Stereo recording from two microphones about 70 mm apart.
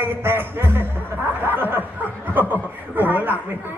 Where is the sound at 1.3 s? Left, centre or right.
Right.